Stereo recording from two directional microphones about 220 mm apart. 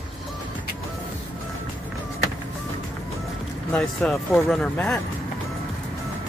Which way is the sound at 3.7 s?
5° left (ahead or behind).